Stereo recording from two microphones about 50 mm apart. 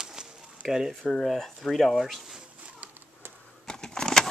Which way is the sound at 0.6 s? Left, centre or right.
Centre.